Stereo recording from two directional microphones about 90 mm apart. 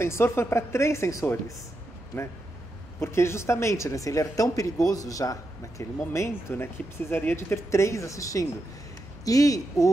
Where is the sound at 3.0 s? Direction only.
30° left (ahead or behind).